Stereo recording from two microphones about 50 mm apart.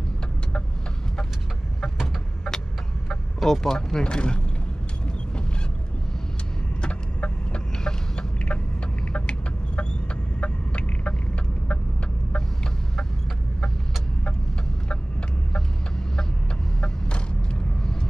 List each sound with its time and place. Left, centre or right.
3.1 s speech: centre
6.8 s chicken: left
10.4 s fowl: left